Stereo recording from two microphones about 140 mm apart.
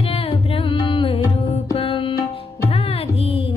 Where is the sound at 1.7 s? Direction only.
40° left (ahead or behind).